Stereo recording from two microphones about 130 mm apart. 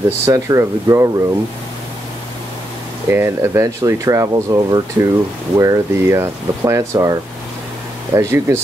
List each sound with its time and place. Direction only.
0.2 s speech: 25° right (ahead or behind)
3.1 s speech: 20° right (ahead or behind)